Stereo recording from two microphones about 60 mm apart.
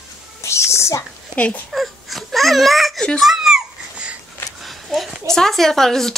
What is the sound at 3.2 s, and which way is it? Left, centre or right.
Babbling, centre.